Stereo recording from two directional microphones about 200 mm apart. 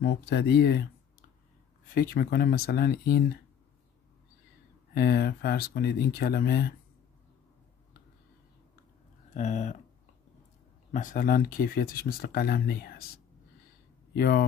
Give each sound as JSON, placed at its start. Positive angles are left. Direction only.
{"t": 0.0, "sound": "speech", "side_deg": 55}
{"t": 2.0, "sound": "speech", "side_deg": 50}
{"t": 4.9, "sound": "speech", "side_deg": 50}
{"t": 9.3, "sound": "speech", "side_deg": 35}
{"t": 10.9, "sound": "speech", "side_deg": 40}
{"t": 14.1, "sound": "speech", "side_deg": 50}